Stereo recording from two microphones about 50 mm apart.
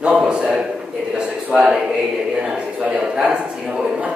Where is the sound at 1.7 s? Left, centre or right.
Centre.